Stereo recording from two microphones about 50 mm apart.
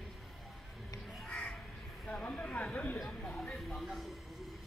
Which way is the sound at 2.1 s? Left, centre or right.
Left.